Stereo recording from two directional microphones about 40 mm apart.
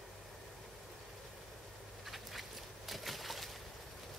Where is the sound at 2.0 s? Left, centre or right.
Centre.